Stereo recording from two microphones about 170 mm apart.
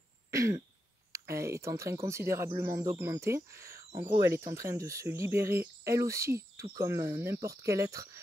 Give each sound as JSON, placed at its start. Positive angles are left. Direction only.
{"t": 0.3, "sound": "throat clearing", "side_deg": -20}
{"t": 1.1, "sound": "speech", "side_deg": -15}